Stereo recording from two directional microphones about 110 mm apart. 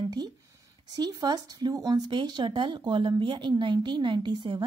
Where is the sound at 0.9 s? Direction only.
40° right (ahead or behind).